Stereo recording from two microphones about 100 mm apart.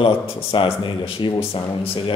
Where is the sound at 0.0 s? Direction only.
60° left (ahead or behind).